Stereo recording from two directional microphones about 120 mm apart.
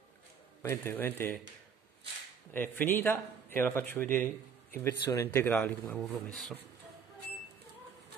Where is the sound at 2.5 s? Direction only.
15° left (ahead or behind).